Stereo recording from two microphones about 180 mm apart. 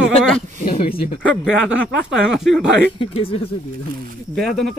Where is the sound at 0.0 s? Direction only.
Centre (ahead or behind).